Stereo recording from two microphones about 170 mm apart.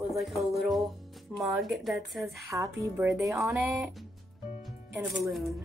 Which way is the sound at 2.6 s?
15° right (ahead or behind).